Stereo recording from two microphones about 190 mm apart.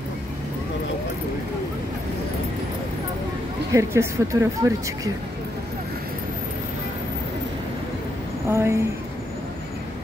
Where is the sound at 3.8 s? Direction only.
15° right (ahead or behind).